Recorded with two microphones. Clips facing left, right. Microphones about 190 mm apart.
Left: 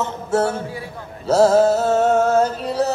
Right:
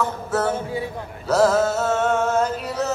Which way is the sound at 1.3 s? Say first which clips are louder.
Left 4 dB; 30° left (ahead or behind).